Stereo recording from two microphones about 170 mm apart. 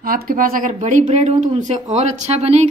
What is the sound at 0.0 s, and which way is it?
Speech, 55° right (ahead or behind).